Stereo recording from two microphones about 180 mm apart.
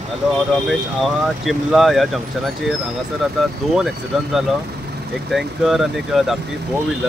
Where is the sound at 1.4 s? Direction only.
Centre (ahead or behind).